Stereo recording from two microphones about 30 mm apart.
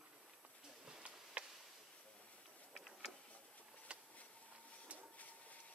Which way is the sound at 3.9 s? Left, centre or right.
Right.